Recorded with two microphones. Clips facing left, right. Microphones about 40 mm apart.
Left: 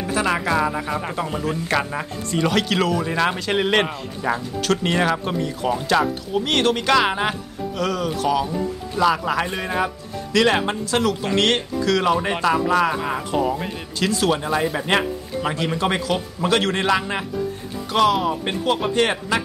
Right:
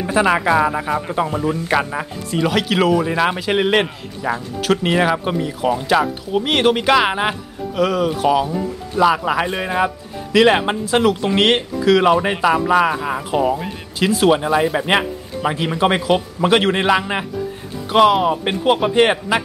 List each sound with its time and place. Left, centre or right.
0.0 s speech: centre
1.3 s speech: centre
3.8 s speech: centre
4.6 s speech: centre
12.9 s speech: centre